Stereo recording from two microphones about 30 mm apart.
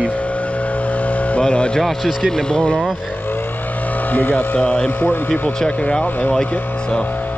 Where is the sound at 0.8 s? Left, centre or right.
Left.